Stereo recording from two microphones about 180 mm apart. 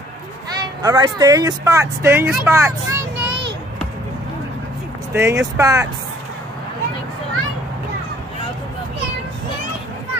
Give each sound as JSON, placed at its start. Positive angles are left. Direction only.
{"t": 0.6, "sound": "speech", "side_deg": -20}
{"t": 5.1, "sound": "speech", "side_deg": -15}